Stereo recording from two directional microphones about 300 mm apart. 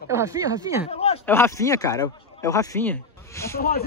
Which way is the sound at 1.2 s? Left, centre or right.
Centre.